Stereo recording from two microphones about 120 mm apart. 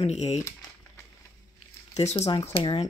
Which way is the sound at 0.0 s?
65° left (ahead or behind).